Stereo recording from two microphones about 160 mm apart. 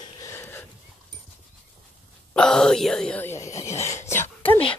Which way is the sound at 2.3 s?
5° left (ahead or behind).